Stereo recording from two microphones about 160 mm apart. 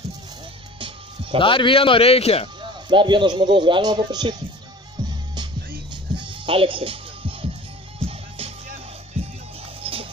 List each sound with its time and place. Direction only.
0.7 s music: 35° right (ahead or behind)
1.4 s a man's voice: 35° left (ahead or behind)
2.9 s speech: 30° right (ahead or behind)
5.0 s music: 25° right (ahead or behind)
9.8 s music: 35° right (ahead or behind)